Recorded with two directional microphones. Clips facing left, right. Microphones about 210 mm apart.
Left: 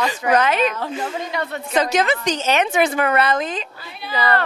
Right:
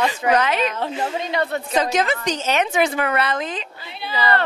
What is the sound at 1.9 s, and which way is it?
Speech, 75° left (ahead or behind).